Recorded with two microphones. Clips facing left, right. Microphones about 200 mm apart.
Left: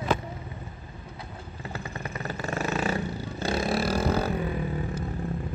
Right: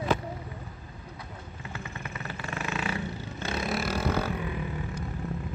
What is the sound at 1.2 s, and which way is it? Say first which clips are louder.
Vehicle: left 4 dB; 35° left (ahead or behind).